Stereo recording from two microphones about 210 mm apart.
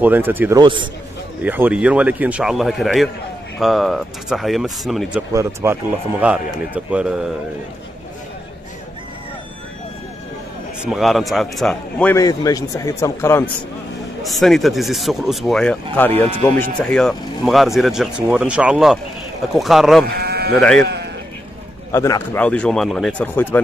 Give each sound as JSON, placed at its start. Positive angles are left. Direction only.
{"t": 0.0, "sound": "a man's voice", "side_deg": -10}
{"t": 0.6, "sound": "a man's voice", "side_deg": -20}
{"t": 1.4, "sound": "a man's voice", "side_deg": -10}
{"t": 5.3, "sound": "a man's voice", "side_deg": -15}
{"t": 10.8, "sound": "speech", "side_deg": 0}
{"t": 12.2, "sound": "speech", "side_deg": 15}
{"t": 14.2, "sound": "speech", "side_deg": 0}
{"t": 20.1, "sound": "speech", "side_deg": -50}
{"t": 20.5, "sound": "speech", "side_deg": 5}
{"t": 20.8, "sound": "speech", "side_deg": -50}
{"t": 21.9, "sound": "speech", "side_deg": 15}